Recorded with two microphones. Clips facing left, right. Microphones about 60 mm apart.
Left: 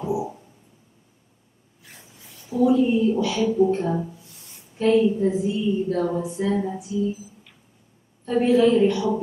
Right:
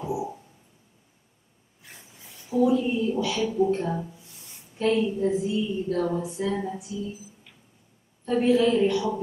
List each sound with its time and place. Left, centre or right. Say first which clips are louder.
0.0 s a sound: left 4 dB; centre
2.6 s a woman's voice: left 5 dB; centre
8.3 s a woman's voice: left 3 dB; centre